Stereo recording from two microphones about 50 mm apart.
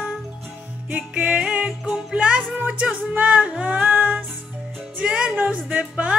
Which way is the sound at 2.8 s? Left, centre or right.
Right.